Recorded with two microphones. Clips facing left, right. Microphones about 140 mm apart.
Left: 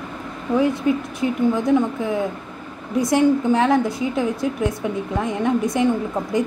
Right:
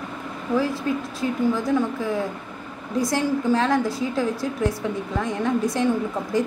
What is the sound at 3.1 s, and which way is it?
A woman's voice, 20° left (ahead or behind).